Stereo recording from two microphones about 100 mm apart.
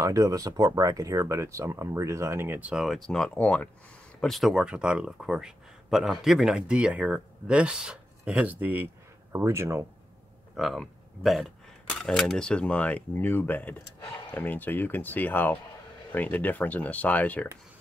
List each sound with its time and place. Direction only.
0.0 s speech: 35° right (ahead or behind)
2.7 s speech: centre (ahead or behind)
4.2 s speech: centre (ahead or behind); by 9.8 s 25° right (ahead or behind)
10.5 s speech: centre (ahead or behind); by 17.5 s 15° left (ahead or behind)